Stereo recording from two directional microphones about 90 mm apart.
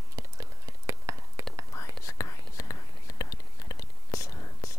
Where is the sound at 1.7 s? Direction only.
35° left (ahead or behind).